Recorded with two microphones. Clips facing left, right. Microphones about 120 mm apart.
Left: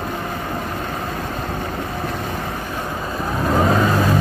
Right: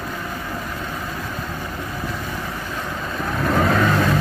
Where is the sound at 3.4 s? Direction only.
25° left (ahead or behind).